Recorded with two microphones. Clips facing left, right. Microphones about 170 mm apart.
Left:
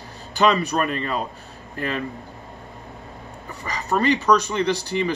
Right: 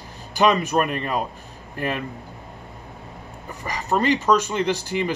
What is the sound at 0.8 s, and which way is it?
Speech, 15° right (ahead or behind).